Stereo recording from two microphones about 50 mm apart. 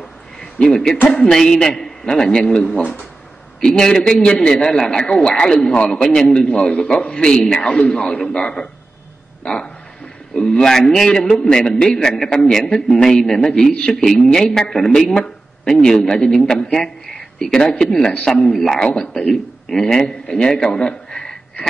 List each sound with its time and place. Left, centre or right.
0.4 s a man's voice: centre
9.4 s a sound: centre
10.3 s a man's voice: centre
18.1 s a man's voice: left
18.5 s a man's voice: centre